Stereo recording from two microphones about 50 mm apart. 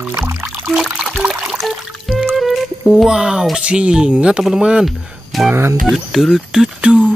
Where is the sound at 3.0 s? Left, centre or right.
Centre.